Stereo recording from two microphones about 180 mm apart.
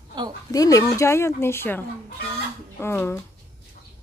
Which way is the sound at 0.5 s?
20° left (ahead or behind).